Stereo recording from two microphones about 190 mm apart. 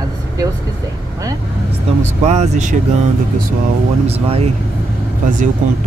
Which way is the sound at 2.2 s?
35° right (ahead or behind).